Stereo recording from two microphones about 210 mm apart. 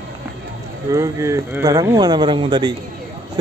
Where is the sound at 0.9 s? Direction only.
15° right (ahead or behind).